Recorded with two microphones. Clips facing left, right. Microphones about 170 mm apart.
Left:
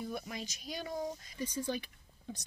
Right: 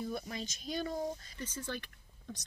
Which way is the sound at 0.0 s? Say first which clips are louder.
Right 1 dB; 10° left (ahead or behind).